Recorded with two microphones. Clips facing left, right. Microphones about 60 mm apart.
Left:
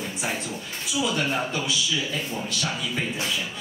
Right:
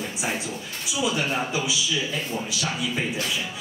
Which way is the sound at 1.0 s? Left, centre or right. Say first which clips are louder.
Right 1 dB; centre.